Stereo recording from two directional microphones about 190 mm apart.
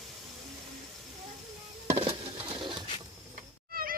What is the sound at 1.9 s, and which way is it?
Patter, 30° right (ahead or behind).